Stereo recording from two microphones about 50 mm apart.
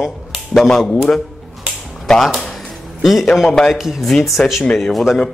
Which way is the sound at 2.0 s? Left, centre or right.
Centre.